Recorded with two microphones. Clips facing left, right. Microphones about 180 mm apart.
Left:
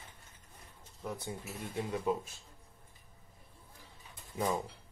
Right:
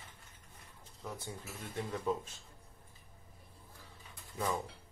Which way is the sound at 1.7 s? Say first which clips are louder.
Left 2 dB; 10° left (ahead or behind).